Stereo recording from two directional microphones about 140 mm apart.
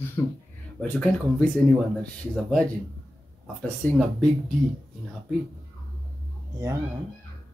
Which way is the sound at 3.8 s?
10° left (ahead or behind).